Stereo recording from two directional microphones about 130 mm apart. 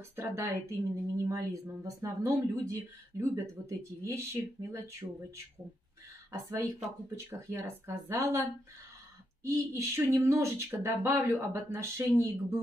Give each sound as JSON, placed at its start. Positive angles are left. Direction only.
{"t": 0.1, "sound": "a woman's voice", "side_deg": -15}
{"t": 7.2, "sound": "a woman's voice", "side_deg": -20}
{"t": 9.4, "sound": "a woman's voice", "side_deg": -20}